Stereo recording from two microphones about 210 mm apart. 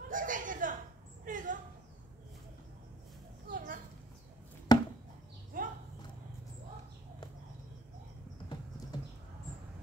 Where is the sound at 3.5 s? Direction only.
40° right (ahead or behind).